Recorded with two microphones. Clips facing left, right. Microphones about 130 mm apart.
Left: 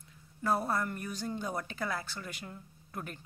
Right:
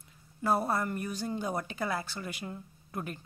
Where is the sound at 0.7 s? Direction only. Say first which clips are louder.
Right 2 dB; 10° right (ahead or behind).